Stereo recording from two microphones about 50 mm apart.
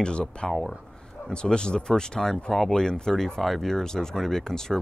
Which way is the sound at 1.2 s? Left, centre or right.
Centre.